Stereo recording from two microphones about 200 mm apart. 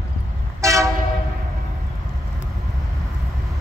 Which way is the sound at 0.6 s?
15° right (ahead or behind).